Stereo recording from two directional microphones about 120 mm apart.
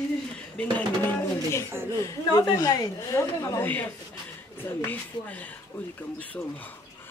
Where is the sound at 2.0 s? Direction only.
30° left (ahead or behind).